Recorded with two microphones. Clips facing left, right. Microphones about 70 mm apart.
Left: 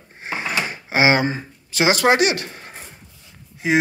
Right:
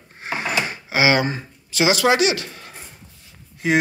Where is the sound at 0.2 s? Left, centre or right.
Left.